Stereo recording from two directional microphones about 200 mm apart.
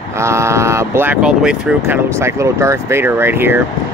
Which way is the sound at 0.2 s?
15° right (ahead or behind).